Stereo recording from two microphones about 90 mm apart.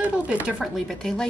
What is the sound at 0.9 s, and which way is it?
Speech, 5° left (ahead or behind).